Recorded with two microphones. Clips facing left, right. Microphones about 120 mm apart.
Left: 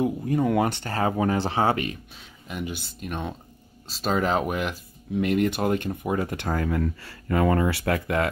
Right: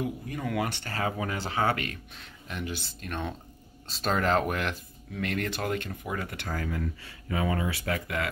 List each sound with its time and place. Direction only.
0.0 s speech: 30° left (ahead or behind)
2.4 s speech: 15° left (ahead or behind)
6.4 s speech: 50° left (ahead or behind)